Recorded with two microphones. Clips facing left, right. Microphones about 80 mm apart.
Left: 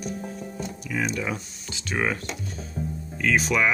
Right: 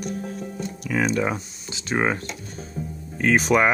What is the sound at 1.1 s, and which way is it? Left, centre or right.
Speech, right.